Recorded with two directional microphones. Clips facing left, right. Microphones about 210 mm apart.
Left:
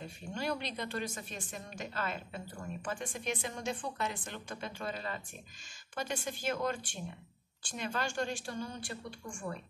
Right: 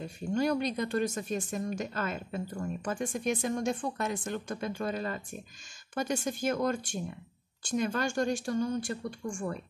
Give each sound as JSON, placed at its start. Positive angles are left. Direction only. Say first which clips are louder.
{"t": 0.3, "sound": "a woman's voice", "louder": "right 9 dB", "side_deg": -45}